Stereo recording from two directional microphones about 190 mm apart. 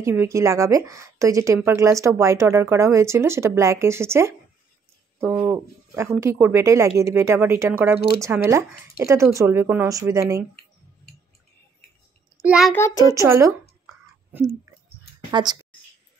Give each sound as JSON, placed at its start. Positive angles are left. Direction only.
{"t": 0.0, "sound": "a woman's voice", "side_deg": -15}
{"t": 12.4, "sound": "a child's voice", "side_deg": -5}
{"t": 12.7, "sound": "child singing", "side_deg": 15}
{"t": 13.1, "sound": "a woman's voice", "side_deg": -15}
{"t": 15.3, "sound": "a woman's voice", "side_deg": -20}